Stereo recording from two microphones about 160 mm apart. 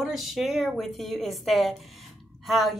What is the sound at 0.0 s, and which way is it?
A woman's voice, centre (ahead or behind).